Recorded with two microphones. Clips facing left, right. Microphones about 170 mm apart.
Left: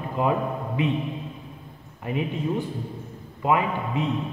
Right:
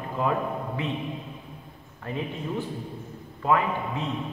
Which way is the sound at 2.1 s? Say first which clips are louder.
Left 4 dB; 15° left (ahead or behind).